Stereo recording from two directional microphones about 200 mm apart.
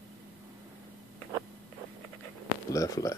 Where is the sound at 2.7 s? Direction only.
15° left (ahead or behind).